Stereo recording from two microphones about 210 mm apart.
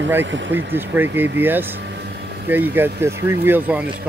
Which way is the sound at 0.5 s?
10° right (ahead or behind).